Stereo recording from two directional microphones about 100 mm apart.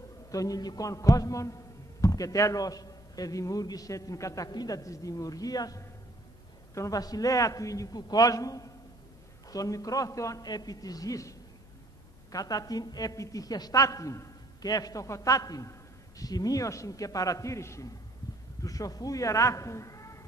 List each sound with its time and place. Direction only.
0.3 s a woman's voice: 35° left (ahead or behind)